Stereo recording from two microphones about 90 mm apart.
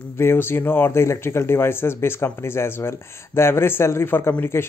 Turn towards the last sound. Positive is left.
turn(degrees=30)  # may be behind; listen again after turning